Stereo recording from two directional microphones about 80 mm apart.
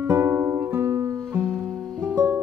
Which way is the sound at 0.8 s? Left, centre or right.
Right.